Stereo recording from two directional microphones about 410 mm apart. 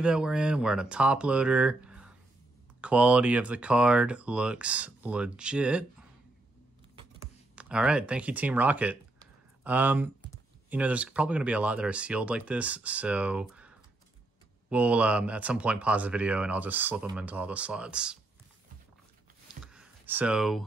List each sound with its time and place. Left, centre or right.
0.0 s speech: centre
7.5 s speech: centre
19.4 s a sound: centre